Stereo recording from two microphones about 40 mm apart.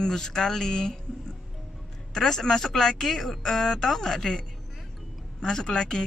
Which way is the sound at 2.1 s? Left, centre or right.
Centre.